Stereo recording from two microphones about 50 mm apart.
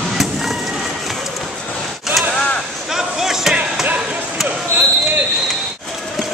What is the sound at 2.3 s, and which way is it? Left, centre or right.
Whip, left.